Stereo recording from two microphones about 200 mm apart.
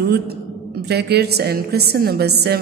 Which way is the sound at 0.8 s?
55° right (ahead or behind).